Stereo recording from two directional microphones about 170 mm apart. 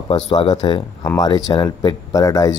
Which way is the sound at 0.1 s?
30° left (ahead or behind).